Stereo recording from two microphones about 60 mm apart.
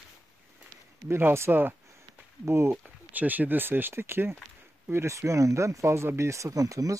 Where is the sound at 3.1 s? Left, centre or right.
Right.